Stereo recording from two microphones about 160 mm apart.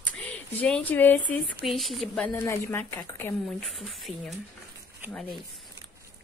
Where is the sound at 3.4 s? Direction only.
Centre (ahead or behind).